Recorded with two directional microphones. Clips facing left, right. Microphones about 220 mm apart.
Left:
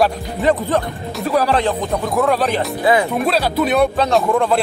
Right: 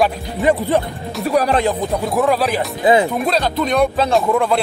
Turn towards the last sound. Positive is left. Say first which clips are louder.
# even
turn(degrees=0)  # may be behind; listen again after turning